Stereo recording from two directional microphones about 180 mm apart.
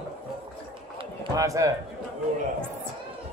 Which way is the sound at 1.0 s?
25° right (ahead or behind).